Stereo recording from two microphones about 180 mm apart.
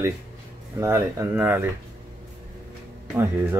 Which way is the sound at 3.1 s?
15° right (ahead or behind).